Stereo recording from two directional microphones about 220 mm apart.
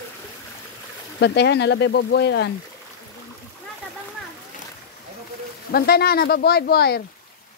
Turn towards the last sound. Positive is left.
turn(degrees=45)  # may be behind; listen again after turning